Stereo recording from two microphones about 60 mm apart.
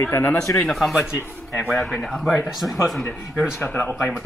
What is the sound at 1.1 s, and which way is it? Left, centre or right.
Speech, left.